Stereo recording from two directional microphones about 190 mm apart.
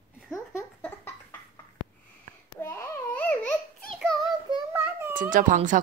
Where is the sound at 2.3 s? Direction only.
45° right (ahead or behind).